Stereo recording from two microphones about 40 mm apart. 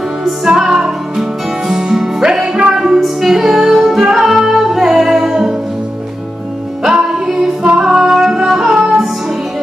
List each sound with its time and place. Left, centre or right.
0.5 s music: centre
6.8 s music: centre